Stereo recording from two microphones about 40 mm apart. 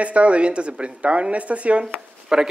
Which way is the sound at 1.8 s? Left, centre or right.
Centre.